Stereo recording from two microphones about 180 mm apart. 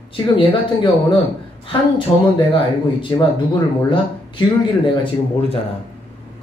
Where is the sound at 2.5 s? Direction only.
30° left (ahead or behind).